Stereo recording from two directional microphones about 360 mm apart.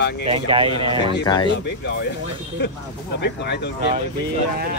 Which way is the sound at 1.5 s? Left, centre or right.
Left.